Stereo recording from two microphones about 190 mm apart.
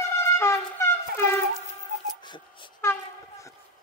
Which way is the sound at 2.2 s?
25° left (ahead or behind).